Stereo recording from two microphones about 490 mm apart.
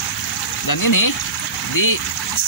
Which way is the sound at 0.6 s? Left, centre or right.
Left.